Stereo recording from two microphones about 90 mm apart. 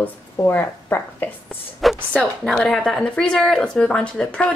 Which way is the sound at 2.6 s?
5° left (ahead or behind).